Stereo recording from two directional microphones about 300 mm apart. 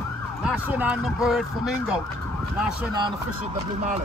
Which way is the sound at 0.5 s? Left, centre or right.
Centre.